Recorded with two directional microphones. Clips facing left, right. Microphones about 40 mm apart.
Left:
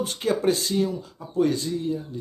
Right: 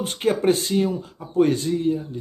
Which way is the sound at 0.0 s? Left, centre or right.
Right.